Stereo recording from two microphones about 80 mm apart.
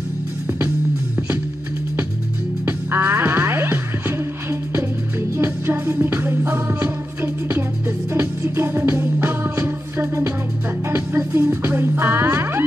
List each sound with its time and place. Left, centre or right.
2.6 s music: right
5.4 s music: right